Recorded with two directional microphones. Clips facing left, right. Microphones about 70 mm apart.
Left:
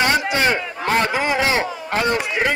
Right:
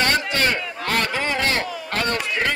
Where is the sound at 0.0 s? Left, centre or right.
Centre.